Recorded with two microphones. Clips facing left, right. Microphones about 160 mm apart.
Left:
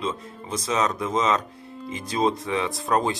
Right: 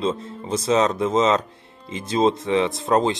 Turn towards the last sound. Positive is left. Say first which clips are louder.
# right 4 dB
turn(degrees=-25)  # may be behind; listen again after turning